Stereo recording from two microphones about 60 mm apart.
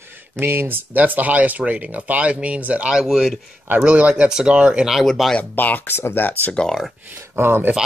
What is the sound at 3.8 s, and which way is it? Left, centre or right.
Speech, right.